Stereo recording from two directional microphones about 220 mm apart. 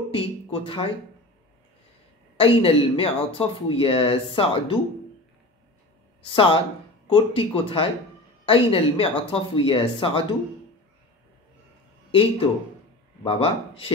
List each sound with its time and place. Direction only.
0.1 s a sound: 25° left (ahead or behind)
2.3 s speech: 25° left (ahead or behind)
6.3 s speech: 25° left (ahead or behind)
12.1 s speech: 25° left (ahead or behind)